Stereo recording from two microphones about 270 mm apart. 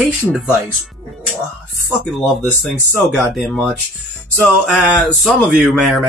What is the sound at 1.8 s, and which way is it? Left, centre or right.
Speech, centre.